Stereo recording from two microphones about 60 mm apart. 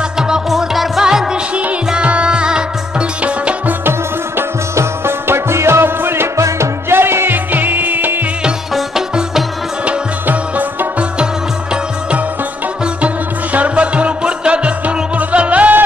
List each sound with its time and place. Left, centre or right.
0.3 s music: centre
1.9 s music: centre
4.4 s music: right
8.7 s music: centre
9.8 s music: right
13.0 s music: right